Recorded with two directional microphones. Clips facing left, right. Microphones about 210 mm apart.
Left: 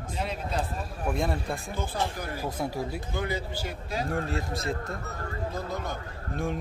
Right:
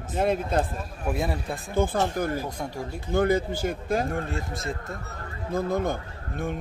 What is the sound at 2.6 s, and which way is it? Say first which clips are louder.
Speech: left 2 dB; 5° left (ahead or behind).